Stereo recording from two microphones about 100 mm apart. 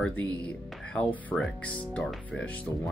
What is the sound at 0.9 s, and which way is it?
Speech, 15° left (ahead or behind).